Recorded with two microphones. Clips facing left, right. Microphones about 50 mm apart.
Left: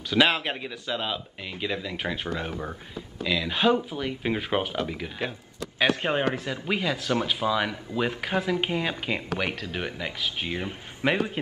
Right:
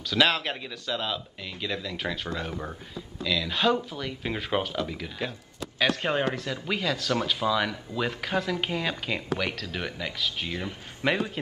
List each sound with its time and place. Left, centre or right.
0.1 s speech: centre
3.3 s speech: left